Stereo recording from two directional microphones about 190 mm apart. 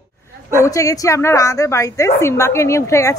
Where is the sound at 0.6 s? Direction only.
15° left (ahead or behind).